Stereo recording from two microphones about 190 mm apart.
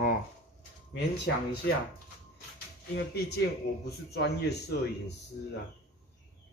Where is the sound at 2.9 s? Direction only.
55° left (ahead or behind).